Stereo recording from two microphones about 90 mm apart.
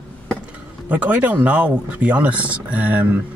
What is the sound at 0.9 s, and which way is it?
Speech, 15° right (ahead or behind).